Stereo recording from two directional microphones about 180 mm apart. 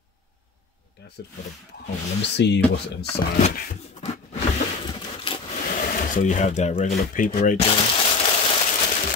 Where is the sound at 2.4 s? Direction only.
75° left (ahead or behind).